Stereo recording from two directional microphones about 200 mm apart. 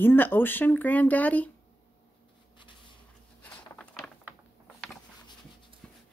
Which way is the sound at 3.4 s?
5° left (ahead or behind).